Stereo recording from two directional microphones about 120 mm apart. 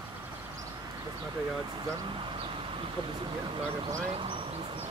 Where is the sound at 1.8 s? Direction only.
40° right (ahead or behind).